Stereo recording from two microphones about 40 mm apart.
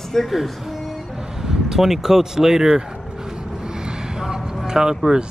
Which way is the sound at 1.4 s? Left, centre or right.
Centre.